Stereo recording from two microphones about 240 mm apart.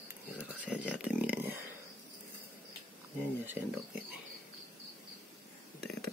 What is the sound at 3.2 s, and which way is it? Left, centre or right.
Speech, centre.